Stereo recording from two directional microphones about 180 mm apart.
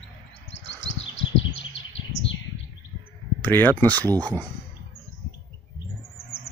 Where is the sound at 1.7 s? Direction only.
90° left.